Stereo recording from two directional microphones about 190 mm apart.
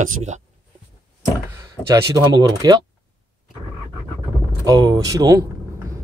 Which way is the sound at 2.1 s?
20° right (ahead or behind).